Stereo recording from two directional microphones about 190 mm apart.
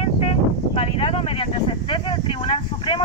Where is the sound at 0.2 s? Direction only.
30° left (ahead or behind).